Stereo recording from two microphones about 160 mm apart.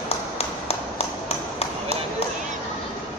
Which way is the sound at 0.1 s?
40° left (ahead or behind).